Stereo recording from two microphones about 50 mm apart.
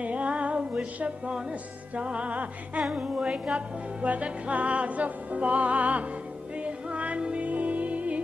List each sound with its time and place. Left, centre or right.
0.0 s music: right